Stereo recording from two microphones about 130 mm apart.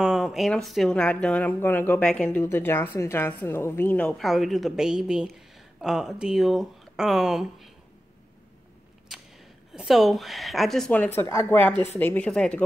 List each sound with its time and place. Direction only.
0.0 s speech: 5° right (ahead or behind)
4.2 s speech: centre (ahead or behind)
9.8 s speech: centre (ahead or behind)
11.1 s speech: 20° left (ahead or behind)